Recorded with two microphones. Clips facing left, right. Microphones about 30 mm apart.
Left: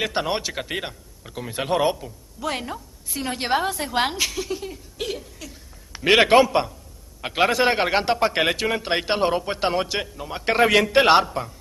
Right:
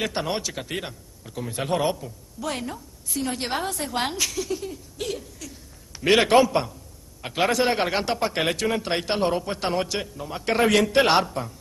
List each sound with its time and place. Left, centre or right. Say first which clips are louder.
0.0 s a man's voice: left 3 dB; centre